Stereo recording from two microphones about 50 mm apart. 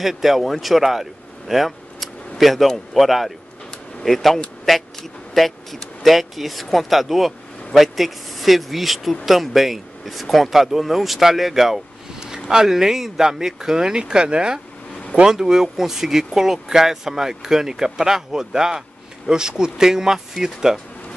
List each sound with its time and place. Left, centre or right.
0.0 s speech: centre